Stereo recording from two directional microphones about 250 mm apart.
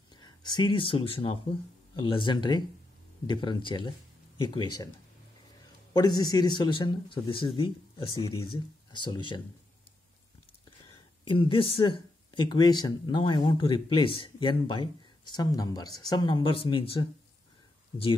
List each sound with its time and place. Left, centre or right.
0.1 s speech: centre
5.9 s speech: centre
10.9 s speech: centre